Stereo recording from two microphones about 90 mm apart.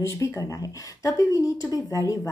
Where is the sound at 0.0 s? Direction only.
30° left (ahead or behind).